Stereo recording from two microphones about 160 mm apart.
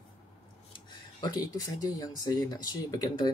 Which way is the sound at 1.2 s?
25° left (ahead or behind).